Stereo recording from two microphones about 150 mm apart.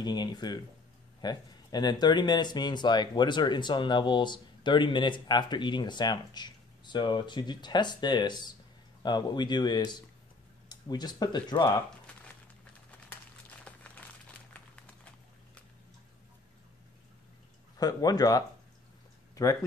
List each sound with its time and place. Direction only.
0.0 s speech: 30° left (ahead or behind)
13.5 s a sound: 10° left (ahead or behind)
17.7 s speech: 25° left (ahead or behind)